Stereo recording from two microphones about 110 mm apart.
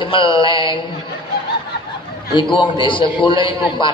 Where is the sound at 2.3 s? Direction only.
45° left (ahead or behind).